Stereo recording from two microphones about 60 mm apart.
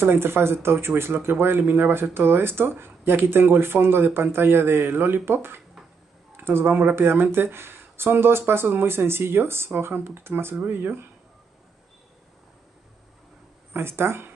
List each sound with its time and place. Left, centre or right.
0.0 s speech: right
6.3 s a sound: right
6.7 s speech: right
7.0 s speech: right
13.7 s speech: right